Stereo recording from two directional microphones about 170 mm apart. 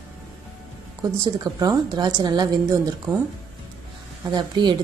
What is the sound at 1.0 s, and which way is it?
A woman's voice, 20° right (ahead or behind).